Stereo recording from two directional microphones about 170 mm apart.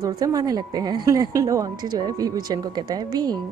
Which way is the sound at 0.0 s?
20° right (ahead or behind).